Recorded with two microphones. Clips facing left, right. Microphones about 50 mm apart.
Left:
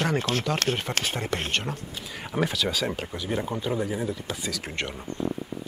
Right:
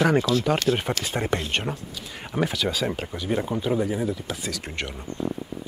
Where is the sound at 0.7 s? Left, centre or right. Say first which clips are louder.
Right 6 dB; left.